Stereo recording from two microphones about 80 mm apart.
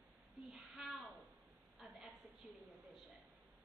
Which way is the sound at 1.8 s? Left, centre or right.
Centre.